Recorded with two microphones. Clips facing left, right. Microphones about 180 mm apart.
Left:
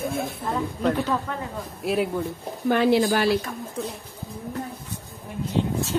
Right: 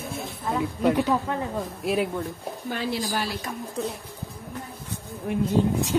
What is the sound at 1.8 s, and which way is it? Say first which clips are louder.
Speech: left 2 dB; centre (ahead or behind).